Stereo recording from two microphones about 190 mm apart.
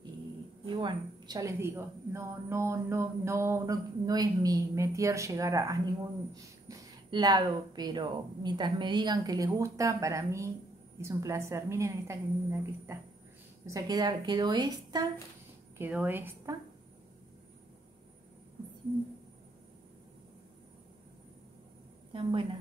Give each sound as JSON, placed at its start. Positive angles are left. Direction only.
{"t": 0.7, "sound": "a woman's voice", "side_deg": -25}
{"t": 15.8, "sound": "a woman's voice", "side_deg": -10}
{"t": 22.1, "sound": "speech", "side_deg": -25}